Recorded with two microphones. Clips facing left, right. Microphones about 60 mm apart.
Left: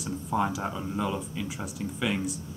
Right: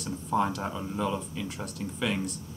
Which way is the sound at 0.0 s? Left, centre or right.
Centre.